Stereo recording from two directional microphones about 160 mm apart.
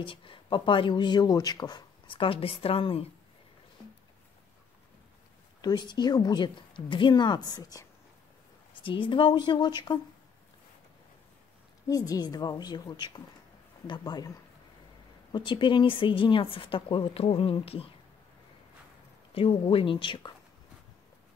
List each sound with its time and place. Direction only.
0.0 s speech: 30° left (ahead or behind)
5.6 s a woman's voice: 25° left (ahead or behind)
8.8 s speech: 30° left (ahead or behind)
11.9 s a woman's voice: 25° left (ahead or behind)
15.3 s speech: 30° left (ahead or behind)
19.3 s speech: 35° left (ahead or behind)